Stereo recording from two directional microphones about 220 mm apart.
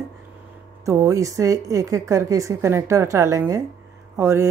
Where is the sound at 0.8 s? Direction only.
15° right (ahead or behind).